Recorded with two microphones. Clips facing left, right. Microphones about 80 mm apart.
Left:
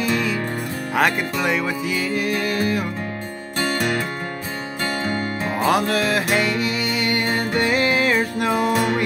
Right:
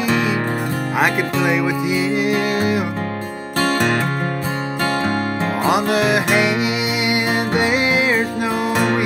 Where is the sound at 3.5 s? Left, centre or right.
Right.